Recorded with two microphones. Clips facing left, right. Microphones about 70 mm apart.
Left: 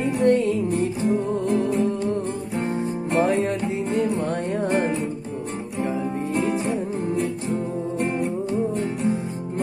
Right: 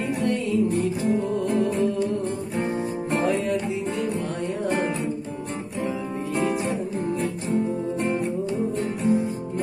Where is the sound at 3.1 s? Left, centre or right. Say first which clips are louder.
Left 2 dB; left.